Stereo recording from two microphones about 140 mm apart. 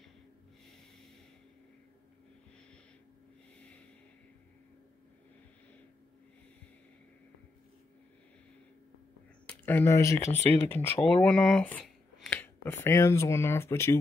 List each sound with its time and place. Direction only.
9.5 s speech: 15° left (ahead or behind)